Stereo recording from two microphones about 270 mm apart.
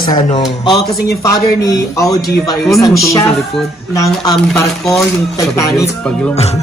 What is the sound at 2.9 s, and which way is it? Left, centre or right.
Speech, centre.